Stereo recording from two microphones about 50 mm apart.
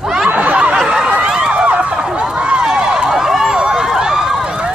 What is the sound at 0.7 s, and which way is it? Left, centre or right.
Snicker, centre.